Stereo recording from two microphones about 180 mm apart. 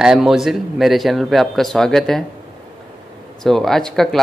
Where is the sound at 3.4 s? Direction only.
Centre (ahead or behind).